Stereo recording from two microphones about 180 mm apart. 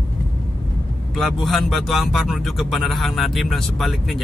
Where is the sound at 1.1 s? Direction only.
Centre (ahead or behind).